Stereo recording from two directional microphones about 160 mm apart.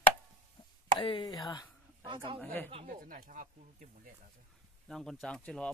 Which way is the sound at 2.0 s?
30° right (ahead or behind).